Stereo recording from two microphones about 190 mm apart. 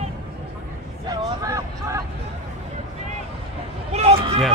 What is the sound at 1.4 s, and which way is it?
Vehicle, 15° right (ahead or behind).